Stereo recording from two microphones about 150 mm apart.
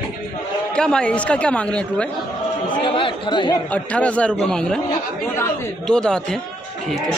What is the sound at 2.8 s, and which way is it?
Speech, 35° left (ahead or behind).